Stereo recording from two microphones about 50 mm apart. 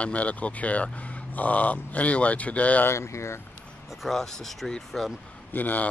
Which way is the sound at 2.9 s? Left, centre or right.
Left.